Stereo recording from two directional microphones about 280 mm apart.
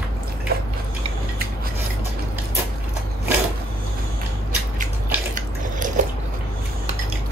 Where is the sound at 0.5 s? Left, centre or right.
Right.